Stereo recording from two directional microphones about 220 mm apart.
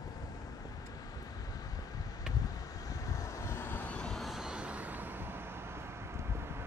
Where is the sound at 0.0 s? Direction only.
15° left (ahead or behind).